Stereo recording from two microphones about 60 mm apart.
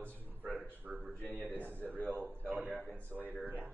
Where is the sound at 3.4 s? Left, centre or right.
Right.